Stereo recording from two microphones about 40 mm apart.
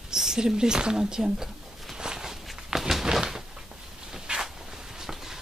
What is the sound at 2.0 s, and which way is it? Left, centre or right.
Walk, centre.